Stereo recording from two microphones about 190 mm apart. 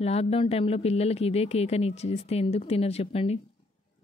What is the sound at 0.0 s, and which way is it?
Speech, 30° left (ahead or behind).